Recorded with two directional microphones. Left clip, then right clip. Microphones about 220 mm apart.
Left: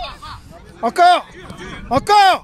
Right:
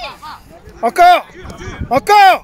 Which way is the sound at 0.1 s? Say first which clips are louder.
Right 3 dB; 50° left (ahead or behind).